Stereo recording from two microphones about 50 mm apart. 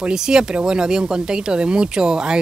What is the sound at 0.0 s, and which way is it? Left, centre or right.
Speech, centre.